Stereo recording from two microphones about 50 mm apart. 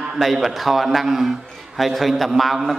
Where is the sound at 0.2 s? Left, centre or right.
Centre.